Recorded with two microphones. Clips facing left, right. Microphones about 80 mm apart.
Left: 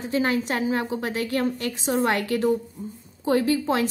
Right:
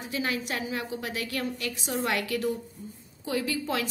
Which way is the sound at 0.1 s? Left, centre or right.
Left.